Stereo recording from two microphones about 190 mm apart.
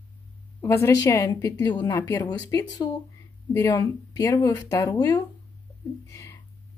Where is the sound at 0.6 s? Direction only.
15° left (ahead or behind).